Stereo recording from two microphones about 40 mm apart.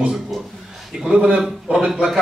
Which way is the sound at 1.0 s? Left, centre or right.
Right.